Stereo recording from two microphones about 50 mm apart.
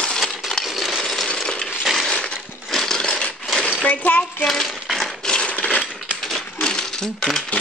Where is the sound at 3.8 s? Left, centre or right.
Left.